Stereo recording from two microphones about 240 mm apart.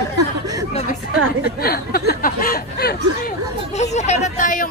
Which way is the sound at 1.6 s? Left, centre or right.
Left.